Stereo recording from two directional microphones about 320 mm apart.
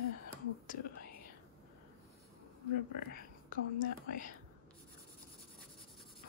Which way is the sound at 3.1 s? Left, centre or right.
Left.